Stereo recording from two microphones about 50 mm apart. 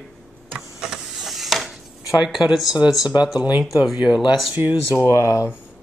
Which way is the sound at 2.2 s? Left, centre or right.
Centre.